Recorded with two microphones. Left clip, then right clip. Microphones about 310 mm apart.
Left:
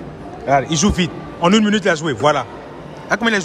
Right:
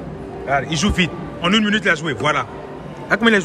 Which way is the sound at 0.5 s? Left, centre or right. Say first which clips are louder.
Left 4 dB; centre.